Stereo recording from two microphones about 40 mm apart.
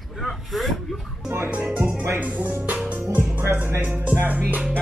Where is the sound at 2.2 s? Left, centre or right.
Right.